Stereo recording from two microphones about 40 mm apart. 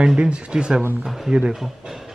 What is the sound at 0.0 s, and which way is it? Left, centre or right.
Speech, right.